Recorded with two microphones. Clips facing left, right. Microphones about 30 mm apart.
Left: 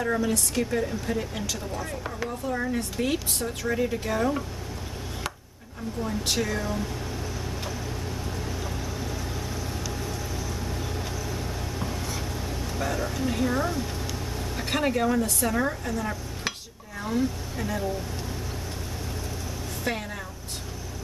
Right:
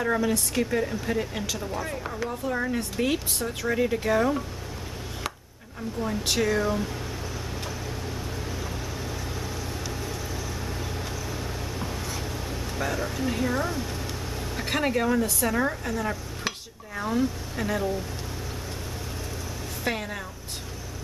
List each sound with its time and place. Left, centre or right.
0.0 s speech: centre
6.0 s speech: centre
10.8 s vehicle: centre
14.6 s speech: centre
17.6 s speech: centre
19.8 s speech: centre